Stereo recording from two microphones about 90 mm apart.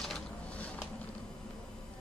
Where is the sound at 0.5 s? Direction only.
15° left (ahead or behind).